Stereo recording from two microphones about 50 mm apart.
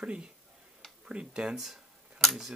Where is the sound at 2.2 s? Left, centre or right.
Centre.